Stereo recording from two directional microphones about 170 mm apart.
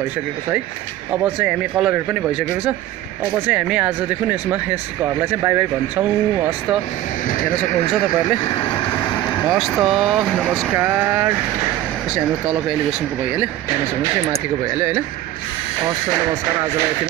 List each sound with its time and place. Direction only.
1.1 s speech: 10° right (ahead or behind)
8.5 s speech: 25° left (ahead or behind)
9.5 s speech: centre (ahead or behind)
14.8 s speech: 10° right (ahead or behind)